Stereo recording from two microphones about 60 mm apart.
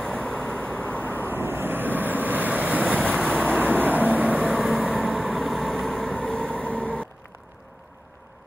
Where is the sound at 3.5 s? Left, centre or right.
Right.